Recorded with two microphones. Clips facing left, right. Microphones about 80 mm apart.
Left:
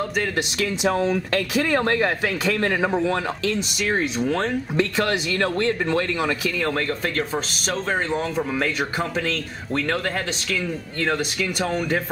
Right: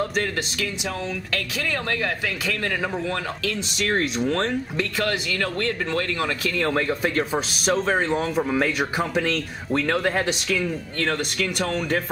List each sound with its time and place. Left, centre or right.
0.8 s speech: left
1.5 s speech: left
4.2 s speech: centre
4.7 s speech: left
6.6 s speech: centre
11.0 s speech: centre